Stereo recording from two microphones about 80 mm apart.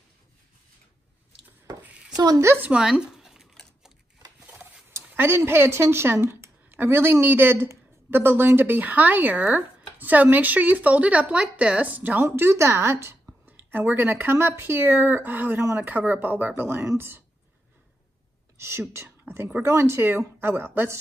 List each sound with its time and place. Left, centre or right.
2.1 s a woman's voice: right
2.4 s speech: right
2.7 s a sound: centre
4.5 s speech: right
18.6 s speech: right